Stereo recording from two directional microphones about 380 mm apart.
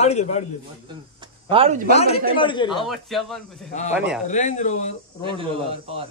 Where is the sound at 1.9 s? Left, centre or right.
Centre.